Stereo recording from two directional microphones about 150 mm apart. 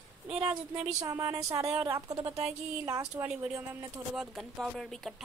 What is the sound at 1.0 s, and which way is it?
Speech, 25° right (ahead or behind).